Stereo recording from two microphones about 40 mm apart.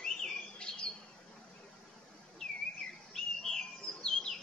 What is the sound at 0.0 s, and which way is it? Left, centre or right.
Bird, centre.